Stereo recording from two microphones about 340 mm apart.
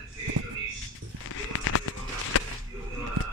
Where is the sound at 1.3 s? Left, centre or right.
Left.